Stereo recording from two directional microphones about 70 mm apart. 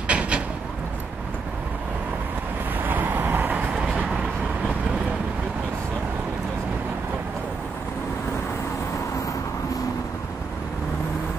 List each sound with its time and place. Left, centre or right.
0.1 s a sound: centre
2.8 s vehicle: right
3.8 s vehicle: centre